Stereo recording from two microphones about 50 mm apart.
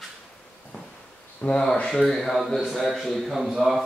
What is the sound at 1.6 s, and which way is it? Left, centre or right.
Speech, centre.